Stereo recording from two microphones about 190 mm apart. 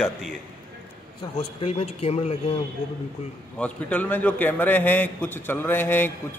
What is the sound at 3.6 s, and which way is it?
A man's voice, 10° left (ahead or behind).